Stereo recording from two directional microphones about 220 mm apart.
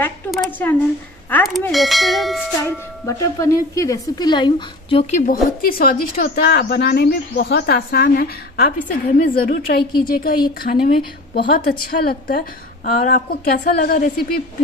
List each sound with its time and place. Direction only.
0.0 s a woman's voice: 5° left (ahead or behind)
3.1 s a woman's voice: 15° left (ahead or behind); by 13.9 s 45° left (ahead or behind)